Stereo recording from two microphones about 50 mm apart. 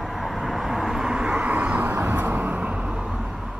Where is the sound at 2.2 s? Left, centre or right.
Right.